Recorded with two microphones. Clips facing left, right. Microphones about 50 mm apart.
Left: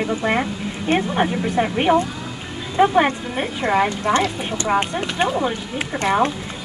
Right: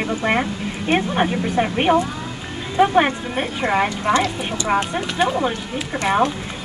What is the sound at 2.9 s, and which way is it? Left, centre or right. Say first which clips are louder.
Speech: even; right.